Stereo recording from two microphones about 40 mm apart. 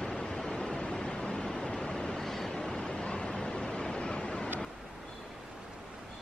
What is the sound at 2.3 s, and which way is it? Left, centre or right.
Vehicle, centre.